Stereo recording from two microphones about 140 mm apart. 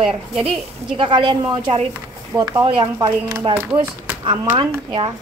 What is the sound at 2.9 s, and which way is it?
Speech, 20° right (ahead or behind).